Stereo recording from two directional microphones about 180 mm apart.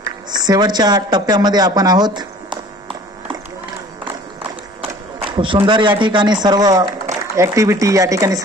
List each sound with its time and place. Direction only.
0.3 s speech: 20° right (ahead or behind)
5.2 s speech: 30° right (ahead or behind)